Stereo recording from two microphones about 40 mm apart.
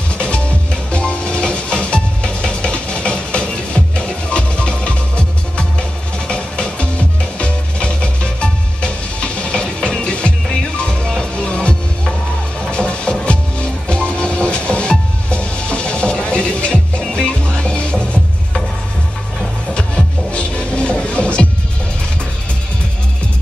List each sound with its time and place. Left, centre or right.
0.2 s music: left
19.7 s music: left